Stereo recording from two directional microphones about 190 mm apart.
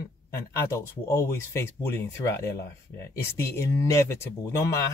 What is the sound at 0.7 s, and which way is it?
Speech, 15° left (ahead or behind).